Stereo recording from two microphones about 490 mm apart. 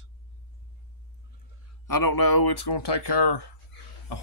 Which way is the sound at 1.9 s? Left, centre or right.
Left.